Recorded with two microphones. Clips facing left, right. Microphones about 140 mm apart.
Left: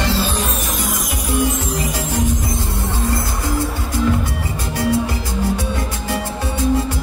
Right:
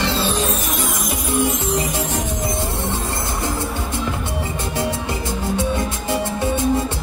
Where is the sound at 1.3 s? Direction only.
25° right (ahead or behind).